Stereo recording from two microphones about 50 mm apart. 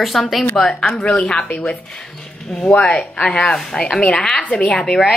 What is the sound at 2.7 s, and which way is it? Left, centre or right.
A woman's voice, centre.